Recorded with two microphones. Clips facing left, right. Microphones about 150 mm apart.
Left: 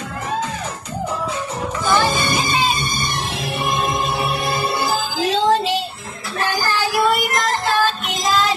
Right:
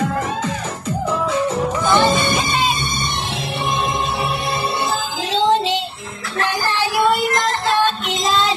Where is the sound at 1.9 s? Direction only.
25° right (ahead or behind).